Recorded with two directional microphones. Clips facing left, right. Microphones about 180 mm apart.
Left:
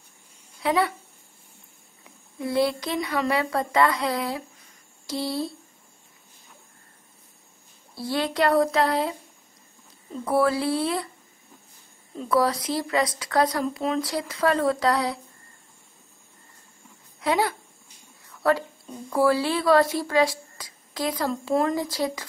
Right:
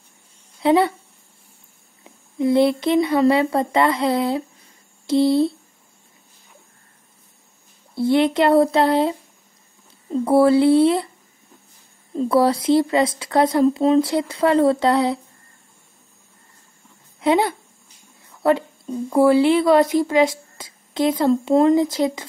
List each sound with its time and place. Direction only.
0.6 s speech: 25° right (ahead or behind)
2.0 s speech: 25° right (ahead or behind)
7.9 s speech: 25° right (ahead or behind)
10.1 s speech: 30° right (ahead or behind)
12.2 s speech: 30° right (ahead or behind)
17.2 s speech: 25° right (ahead or behind)